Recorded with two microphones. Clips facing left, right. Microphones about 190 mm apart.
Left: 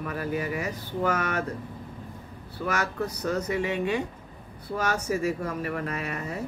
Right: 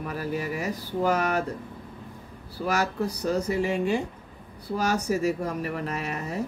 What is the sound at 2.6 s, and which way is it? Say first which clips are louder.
Speech: right 3 dB; 35° right (ahead or behind).